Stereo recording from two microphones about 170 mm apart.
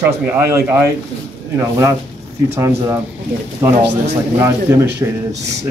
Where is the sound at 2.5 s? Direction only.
15° right (ahead or behind).